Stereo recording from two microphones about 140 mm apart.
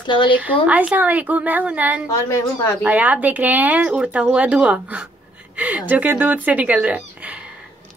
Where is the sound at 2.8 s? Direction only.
10° right (ahead or behind).